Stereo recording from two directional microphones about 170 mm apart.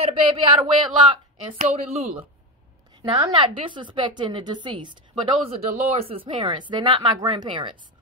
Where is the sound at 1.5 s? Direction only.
40° right (ahead or behind).